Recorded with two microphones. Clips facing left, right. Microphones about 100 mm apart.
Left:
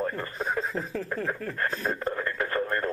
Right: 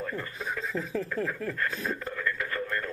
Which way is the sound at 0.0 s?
40° left (ahead or behind).